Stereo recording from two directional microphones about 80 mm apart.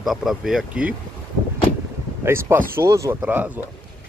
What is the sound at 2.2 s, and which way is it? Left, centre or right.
Speech, right.